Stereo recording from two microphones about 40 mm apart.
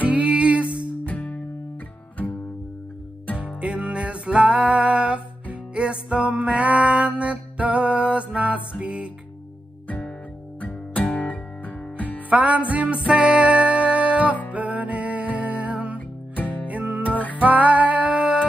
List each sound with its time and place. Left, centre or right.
0.0 s music: right
1.0 s music: left
3.6 s music: right
6.3 s mantra: right
8.8 s music: right
10.6 s music: left
12.3 s music: right
16.3 s music: left
16.6 s music: right